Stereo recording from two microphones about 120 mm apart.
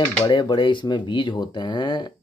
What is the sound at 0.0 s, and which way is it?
Speech, 45° left (ahead or behind).